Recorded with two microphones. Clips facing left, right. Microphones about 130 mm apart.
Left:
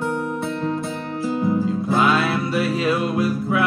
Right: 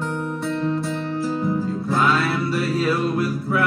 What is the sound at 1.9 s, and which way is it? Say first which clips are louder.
Music: left 1 dB; 20° left (ahead or behind).